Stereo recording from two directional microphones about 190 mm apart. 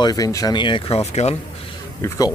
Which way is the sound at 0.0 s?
20° left (ahead or behind).